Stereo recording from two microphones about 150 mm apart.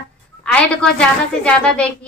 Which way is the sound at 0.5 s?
10° left (ahead or behind).